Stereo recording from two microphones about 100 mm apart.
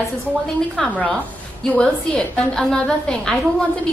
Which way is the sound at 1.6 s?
5° left (ahead or behind).